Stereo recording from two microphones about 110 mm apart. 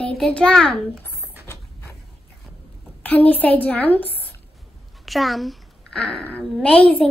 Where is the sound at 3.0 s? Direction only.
15° left (ahead or behind).